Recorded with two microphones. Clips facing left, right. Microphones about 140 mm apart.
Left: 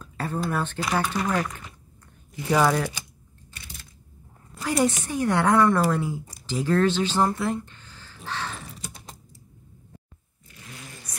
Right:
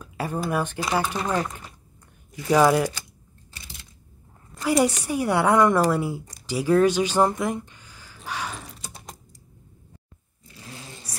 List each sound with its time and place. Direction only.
0.0 s speech: 10° right (ahead or behind)
2.5 s a woman's voice: 10° right (ahead or behind)
4.6 s a woman's voice: 10° right (ahead or behind)
6.4 s a sound: 10° right (ahead or behind)
8.5 s typing: centre (ahead or behind)
10.5 s vehicle: 30° right (ahead or behind)